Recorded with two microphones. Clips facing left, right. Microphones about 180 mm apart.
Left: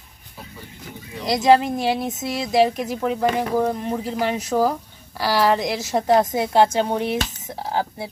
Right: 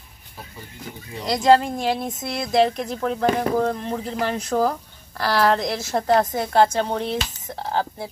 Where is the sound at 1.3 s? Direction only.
20° left (ahead or behind).